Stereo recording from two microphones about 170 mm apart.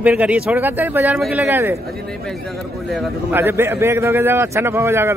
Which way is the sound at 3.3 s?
15° right (ahead or behind).